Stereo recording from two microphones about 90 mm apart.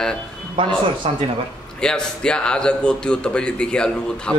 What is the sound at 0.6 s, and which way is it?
Speech, 70° right (ahead or behind).